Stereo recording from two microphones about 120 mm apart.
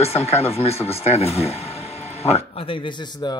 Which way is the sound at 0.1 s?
55° left (ahead or behind).